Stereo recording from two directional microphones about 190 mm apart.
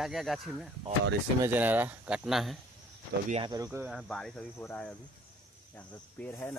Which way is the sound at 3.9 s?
Centre (ahead or behind).